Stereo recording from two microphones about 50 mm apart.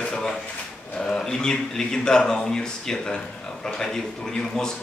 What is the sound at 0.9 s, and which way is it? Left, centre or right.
Speech, centre.